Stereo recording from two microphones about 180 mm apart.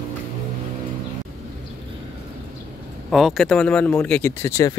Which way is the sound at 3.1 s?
Centre (ahead or behind).